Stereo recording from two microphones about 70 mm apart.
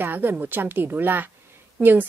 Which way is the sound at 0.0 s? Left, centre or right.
Right.